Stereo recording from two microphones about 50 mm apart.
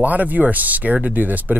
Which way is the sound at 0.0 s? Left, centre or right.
Right.